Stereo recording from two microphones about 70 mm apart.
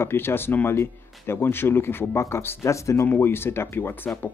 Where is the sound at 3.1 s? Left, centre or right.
Left.